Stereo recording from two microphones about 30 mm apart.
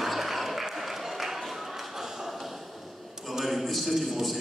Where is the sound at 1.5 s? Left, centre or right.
Centre.